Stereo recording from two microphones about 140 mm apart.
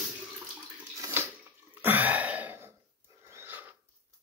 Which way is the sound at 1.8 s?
15° right (ahead or behind).